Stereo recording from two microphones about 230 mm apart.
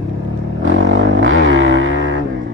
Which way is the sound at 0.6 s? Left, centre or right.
Right.